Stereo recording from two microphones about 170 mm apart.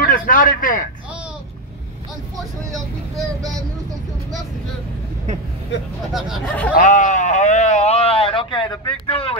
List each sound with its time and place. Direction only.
0.0 s speech: 55° left (ahead or behind)
2.3 s speech: centre (ahead or behind)
6.1 s speech: centre (ahead or behind)
6.7 s a sound: 50° left (ahead or behind); by 9.4 s 35° left (ahead or behind)